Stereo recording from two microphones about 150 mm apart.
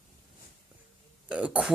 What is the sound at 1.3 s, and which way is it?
Speech, 5° right (ahead or behind).